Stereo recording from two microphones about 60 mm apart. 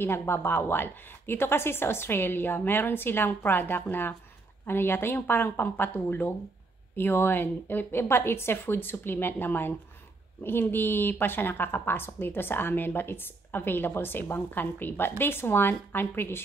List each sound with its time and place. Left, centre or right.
0.0 s a woman's voice: left